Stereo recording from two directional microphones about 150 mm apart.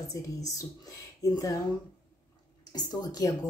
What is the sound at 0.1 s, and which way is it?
Speech, 20° left (ahead or behind).